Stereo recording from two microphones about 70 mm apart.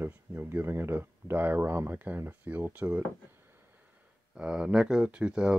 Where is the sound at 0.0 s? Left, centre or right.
Right.